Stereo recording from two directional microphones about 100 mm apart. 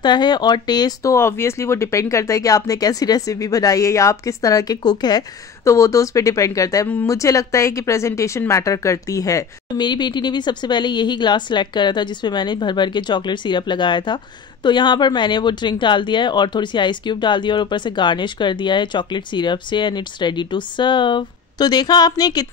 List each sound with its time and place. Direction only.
0.0 s speech: 45° left (ahead or behind)
1.1 s speech: 25° left (ahead or behind); by 5.2 s 45° left (ahead or behind)
5.7 s speech: 30° left (ahead or behind)
9.8 s speech: 45° left (ahead or behind)